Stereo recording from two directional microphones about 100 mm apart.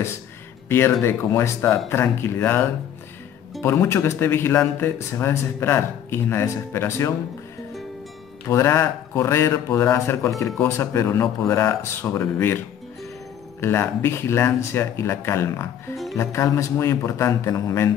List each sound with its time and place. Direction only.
0.7 s speech: 25° left (ahead or behind)
3.6 s speech: 25° left (ahead or behind)
8.5 s speech: 25° left (ahead or behind)